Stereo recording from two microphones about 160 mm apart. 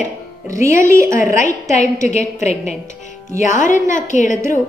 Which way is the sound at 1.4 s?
50° left (ahead or behind).